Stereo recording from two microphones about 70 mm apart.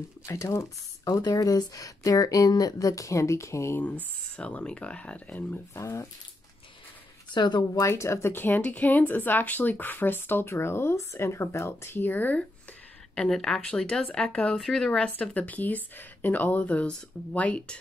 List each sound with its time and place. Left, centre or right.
0.3 s speech: left
1.2 s speech: left
3.7 s speech: left
5.8 s speech: left
7.3 s speech: left
7.8 s speech: left
13.1 s speech: centre
14.6 s speech: centre
14.9 s speech: centre